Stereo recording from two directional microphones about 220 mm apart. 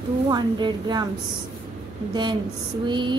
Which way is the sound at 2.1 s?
20° right (ahead or behind).